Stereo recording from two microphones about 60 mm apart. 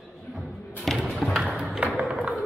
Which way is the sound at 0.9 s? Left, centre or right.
Centre.